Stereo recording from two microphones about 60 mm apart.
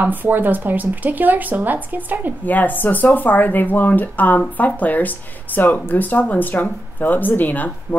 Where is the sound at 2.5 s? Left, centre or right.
Left.